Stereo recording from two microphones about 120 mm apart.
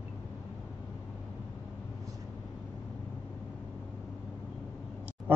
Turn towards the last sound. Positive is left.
turn(degrees=-15)  # may be behind; listen again after turning